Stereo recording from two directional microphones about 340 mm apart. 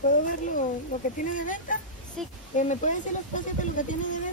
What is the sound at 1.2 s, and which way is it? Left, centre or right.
Speech, left.